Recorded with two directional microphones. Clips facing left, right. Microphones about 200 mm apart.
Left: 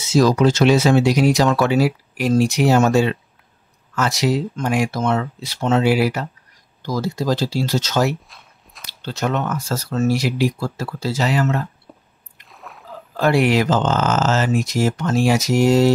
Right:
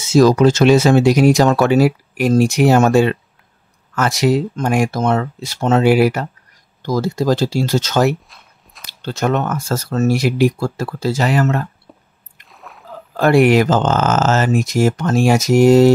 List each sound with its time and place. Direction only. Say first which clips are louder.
0.0 s speech: right 4 dB; 50° right (ahead or behind)
8.3 s biting: even; centre (ahead or behind)
9.0 s speech: right 4 dB; 50° right (ahead or behind)
11.9 s squish: even; centre (ahead or behind)
12.4 s a sound: even; centre (ahead or behind)
13.2 s speech: right 5 dB; 50° right (ahead or behind)